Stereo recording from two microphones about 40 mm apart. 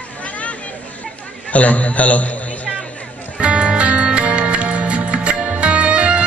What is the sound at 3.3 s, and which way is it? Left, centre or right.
Music, right.